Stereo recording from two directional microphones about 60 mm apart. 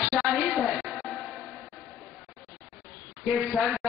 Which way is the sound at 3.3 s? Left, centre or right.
Centre.